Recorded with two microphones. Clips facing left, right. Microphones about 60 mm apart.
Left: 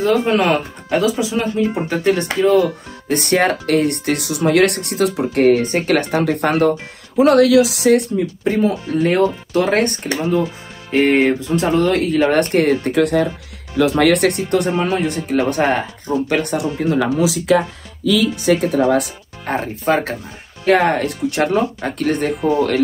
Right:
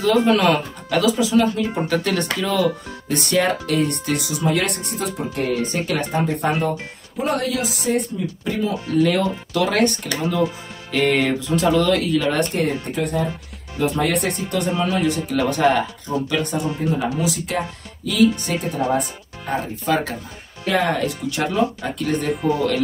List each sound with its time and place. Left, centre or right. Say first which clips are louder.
0.0 s speech: left 1 dB; left
3.1 s speech: left 4 dB; left
5.9 s speech: left 5 dB; left
7.2 s speech: left 11 dB; left
8.5 s speech: left 5 dB; left
13.7 s speech: left 7 dB; left
16.3 s speech: left 3 dB; left
16.8 s speech: left 6 dB; left
18.6 s speech: left 6 dB; left
19.4 s speech: left 4 dB; left
22.3 s speech: left 3 dB; centre